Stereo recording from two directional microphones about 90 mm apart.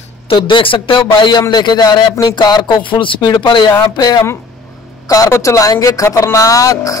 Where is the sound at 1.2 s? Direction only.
55° left (ahead or behind).